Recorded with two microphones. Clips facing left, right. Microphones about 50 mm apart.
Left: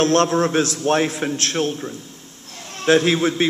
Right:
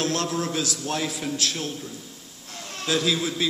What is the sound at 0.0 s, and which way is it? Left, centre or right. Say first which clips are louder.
A man's voice: left 10 dB; left.